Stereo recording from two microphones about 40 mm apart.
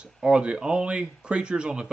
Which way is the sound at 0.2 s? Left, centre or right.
Right.